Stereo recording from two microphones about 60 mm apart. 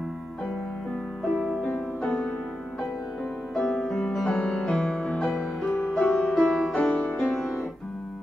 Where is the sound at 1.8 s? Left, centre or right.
Centre.